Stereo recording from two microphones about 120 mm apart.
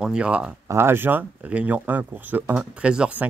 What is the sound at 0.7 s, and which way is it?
Speech, 20° right (ahead or behind).